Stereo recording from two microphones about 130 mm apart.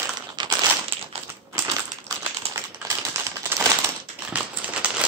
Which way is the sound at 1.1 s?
50° right (ahead or behind).